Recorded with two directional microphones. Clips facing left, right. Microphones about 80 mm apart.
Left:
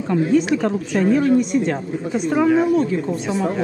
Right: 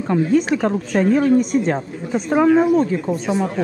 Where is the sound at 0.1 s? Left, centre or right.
Right.